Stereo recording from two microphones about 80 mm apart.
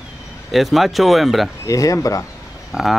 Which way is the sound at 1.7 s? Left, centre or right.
Left.